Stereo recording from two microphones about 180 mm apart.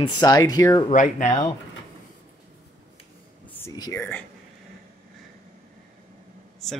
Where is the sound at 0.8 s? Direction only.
40° left (ahead or behind).